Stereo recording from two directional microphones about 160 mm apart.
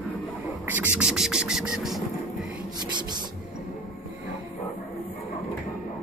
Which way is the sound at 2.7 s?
25° right (ahead or behind).